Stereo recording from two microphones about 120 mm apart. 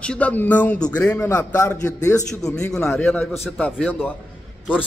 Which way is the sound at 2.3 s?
5° left (ahead or behind).